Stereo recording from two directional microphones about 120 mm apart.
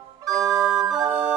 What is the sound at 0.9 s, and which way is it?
Music, 25° right (ahead or behind).